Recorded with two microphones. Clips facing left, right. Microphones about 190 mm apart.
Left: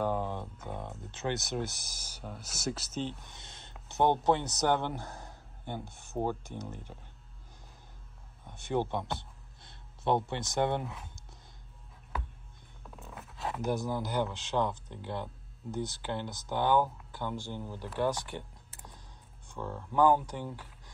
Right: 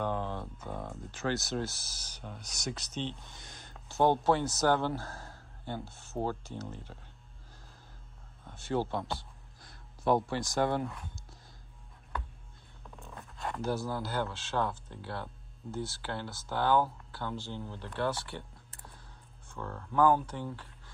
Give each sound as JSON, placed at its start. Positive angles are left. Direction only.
{"t": 0.0, "sound": "a sound", "side_deg": 10}
{"t": 0.8, "sound": "speech", "side_deg": 20}
{"t": 3.3, "sound": "a sound", "side_deg": 25}
{"t": 3.9, "sound": "a man's voice", "side_deg": 20}
{"t": 8.5, "sound": "speech", "side_deg": 20}
{"t": 12.9, "sound": "zipper", "side_deg": 5}
{"t": 13.6, "sound": "speech", "side_deg": 15}
{"t": 19.5, "sound": "speech", "side_deg": 15}